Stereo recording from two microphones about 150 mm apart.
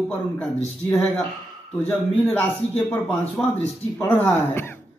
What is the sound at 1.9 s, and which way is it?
Speech, 10° left (ahead or behind).